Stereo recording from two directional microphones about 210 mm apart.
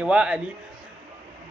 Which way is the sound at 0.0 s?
5° right (ahead or behind).